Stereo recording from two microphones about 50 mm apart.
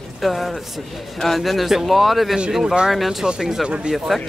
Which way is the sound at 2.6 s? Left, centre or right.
Centre.